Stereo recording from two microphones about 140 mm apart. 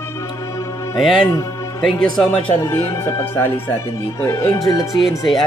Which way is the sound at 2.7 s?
20° left (ahead or behind).